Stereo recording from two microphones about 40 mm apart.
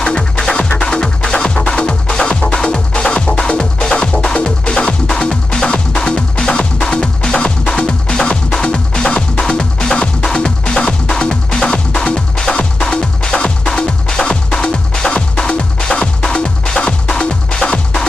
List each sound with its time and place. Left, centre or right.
0.0 s music: left